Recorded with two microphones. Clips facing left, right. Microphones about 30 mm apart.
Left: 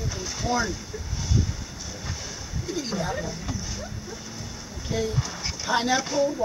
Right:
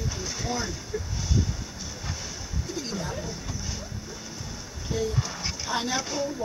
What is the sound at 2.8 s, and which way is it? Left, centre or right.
Speech, left.